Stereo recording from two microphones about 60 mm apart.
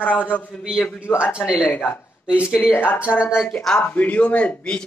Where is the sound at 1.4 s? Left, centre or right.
Centre.